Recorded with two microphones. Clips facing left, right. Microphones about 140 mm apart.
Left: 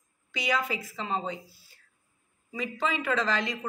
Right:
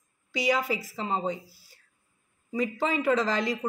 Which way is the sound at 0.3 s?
35° right (ahead or behind).